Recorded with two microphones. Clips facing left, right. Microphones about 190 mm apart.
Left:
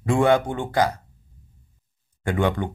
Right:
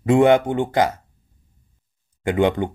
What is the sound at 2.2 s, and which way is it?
Speech, 20° right (ahead or behind).